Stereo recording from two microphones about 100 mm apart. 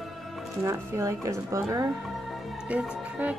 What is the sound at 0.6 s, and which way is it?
Speech, 30° right (ahead or behind).